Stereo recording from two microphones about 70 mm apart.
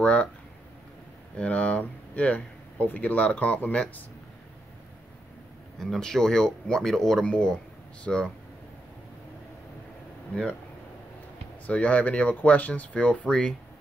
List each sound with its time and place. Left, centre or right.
0.0 s speech: centre
1.3 s speech: centre
5.8 s speech: centre
11.6 s speech: centre